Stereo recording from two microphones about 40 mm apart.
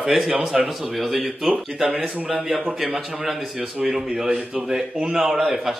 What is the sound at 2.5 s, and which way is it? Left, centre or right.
A man's voice, centre.